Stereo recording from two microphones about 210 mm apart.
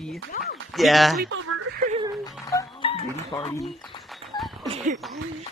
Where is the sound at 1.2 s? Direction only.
80° right.